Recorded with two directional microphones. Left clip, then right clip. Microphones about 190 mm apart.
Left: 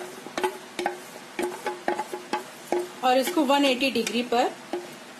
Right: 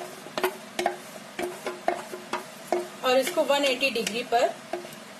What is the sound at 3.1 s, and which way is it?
A woman's voice, 55° left (ahead or behind).